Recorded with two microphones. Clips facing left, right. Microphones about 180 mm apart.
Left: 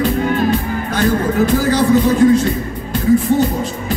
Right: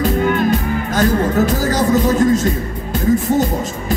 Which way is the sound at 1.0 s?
45° right (ahead or behind).